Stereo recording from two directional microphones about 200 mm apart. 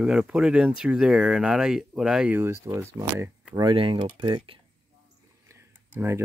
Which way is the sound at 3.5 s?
25° right (ahead or behind).